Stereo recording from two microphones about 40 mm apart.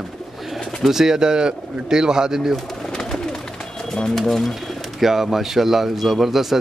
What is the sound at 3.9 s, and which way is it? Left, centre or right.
Speech, centre.